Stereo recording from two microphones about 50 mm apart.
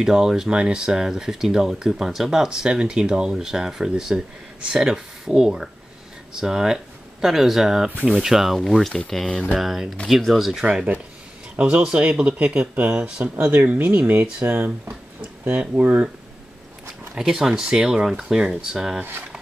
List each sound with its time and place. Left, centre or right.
0.0 s speech: centre
9.6 s speech: centre
10.6 s speech: right
14.4 s speech: right
15.7 s speech: right
17.1 s speech: centre